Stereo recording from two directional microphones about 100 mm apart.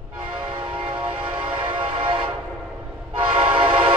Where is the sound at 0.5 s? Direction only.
55° right (ahead or behind).